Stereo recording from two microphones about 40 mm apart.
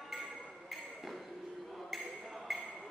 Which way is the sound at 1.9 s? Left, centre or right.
Centre.